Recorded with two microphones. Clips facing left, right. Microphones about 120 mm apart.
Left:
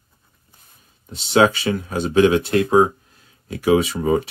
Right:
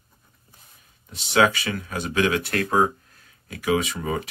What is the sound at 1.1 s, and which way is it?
Speech, 30° left (ahead or behind).